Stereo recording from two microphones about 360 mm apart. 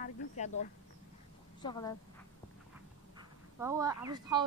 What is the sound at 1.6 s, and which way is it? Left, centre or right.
Speech, centre.